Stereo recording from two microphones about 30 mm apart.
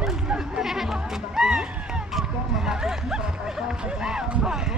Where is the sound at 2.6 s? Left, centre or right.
Centre.